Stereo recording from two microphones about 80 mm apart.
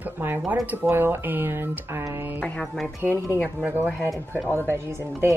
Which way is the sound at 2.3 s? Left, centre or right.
Centre.